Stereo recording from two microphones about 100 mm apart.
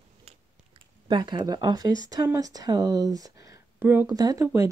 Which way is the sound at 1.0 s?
50° right (ahead or behind).